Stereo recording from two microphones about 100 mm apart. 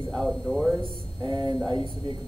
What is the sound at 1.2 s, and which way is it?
Speech, 40° right (ahead or behind).